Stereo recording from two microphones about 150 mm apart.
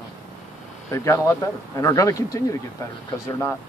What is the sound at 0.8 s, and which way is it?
Speech, 20° left (ahead or behind).